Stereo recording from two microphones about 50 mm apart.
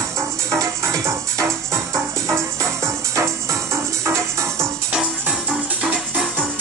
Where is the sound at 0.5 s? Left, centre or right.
Right.